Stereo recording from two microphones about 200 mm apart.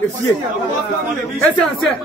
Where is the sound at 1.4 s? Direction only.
5° left (ahead or behind).